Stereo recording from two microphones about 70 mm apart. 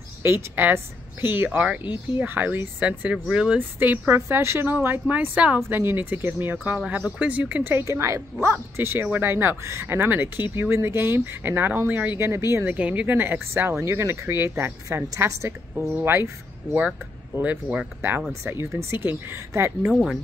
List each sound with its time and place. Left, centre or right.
0.2 s a woman's voice: right; by 3.5 s centre
3.5 s a woman's voice: right
5.7 s a woman's voice: right
7.8 s speech: right
12.2 s speech: right
12.6 s a woman's voice: centre; by 15.5 s right
15.7 s speech: centre
16.0 s speech: right
17.4 s a woman's voice: right
18.4 s speech: right
19.9 s speech: centre